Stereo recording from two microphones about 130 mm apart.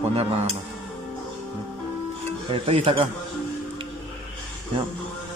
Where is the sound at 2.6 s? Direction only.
45° right (ahead or behind).